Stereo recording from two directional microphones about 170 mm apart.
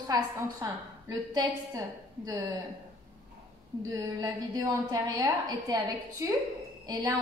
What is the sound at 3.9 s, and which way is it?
A woman's voice, 20° right (ahead or behind).